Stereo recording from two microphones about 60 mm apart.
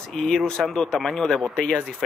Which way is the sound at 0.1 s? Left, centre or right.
Centre.